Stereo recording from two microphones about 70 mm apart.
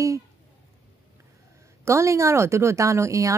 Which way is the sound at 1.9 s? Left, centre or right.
Right.